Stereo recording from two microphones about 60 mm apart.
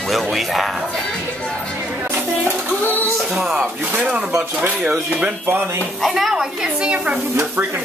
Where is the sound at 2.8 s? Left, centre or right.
Left.